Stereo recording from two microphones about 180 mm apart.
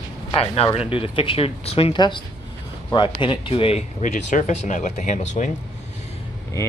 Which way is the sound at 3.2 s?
30° left (ahead or behind).